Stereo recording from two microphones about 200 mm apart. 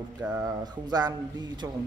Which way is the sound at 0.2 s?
15° right (ahead or behind).